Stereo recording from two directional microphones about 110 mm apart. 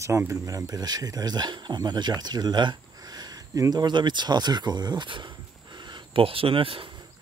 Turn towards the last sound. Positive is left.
turn(degrees=-55)  # may be behind; listen again after turning